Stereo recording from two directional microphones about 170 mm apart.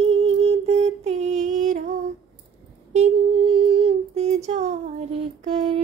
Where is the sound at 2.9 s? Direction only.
35° right (ahead or behind).